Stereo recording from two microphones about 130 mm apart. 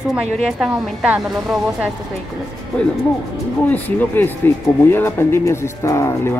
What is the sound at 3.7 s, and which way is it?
A man's voice, 15° left (ahead or behind).